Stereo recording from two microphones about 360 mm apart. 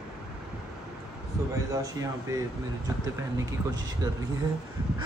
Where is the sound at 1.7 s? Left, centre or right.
Centre.